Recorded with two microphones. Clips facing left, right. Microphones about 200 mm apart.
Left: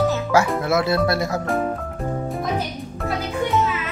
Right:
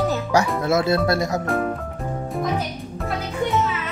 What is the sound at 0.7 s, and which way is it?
Speech, 25° right (ahead or behind).